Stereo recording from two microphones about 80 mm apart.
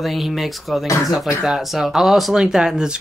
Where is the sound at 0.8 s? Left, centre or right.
Left.